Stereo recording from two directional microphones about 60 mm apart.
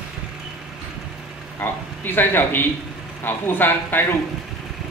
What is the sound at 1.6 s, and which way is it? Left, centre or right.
A man's voice, left.